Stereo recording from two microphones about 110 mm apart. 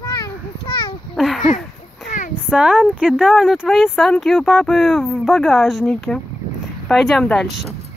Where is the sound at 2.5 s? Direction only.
10° right (ahead or behind).